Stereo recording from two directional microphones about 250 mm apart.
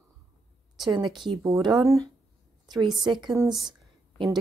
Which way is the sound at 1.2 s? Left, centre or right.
Centre.